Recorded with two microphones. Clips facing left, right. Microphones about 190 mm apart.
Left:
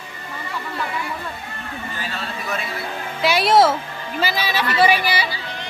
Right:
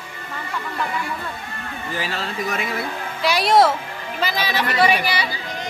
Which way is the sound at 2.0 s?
90° right.